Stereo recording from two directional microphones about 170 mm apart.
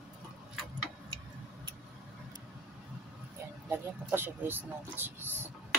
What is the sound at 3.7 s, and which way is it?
Speech, 10° right (ahead or behind).